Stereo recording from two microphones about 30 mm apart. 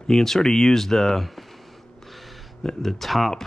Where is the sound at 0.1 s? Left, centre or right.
Centre.